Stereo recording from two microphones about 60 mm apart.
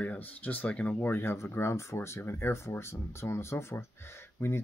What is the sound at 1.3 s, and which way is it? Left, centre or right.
Speech, left.